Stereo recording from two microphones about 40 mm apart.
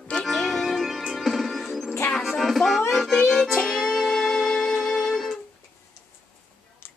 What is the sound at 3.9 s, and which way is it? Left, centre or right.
Music, centre.